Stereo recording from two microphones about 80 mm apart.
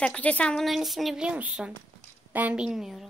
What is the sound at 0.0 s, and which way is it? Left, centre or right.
Speech, centre.